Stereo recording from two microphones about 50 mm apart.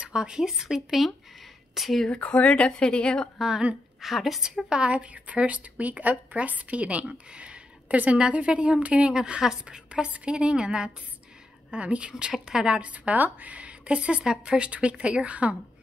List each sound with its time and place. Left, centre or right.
0.0 s a woman's voice: centre
2.0 s speech: left
3.3 s a woman's voice: centre
4.6 s speech: centre
12.8 s speech: right